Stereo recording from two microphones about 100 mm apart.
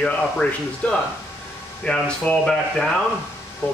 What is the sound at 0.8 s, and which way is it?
Speech, 15° left (ahead or behind).